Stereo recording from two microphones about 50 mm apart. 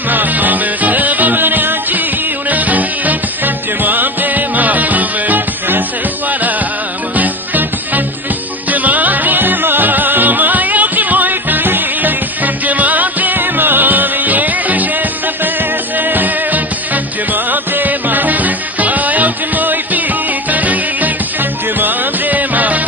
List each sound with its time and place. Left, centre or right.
0.1 s music: right
7.2 s music: right
16.0 s music: right